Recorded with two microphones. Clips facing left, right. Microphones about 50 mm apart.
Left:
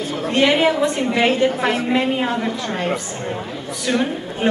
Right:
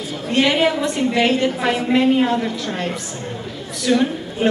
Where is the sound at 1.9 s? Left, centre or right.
Centre.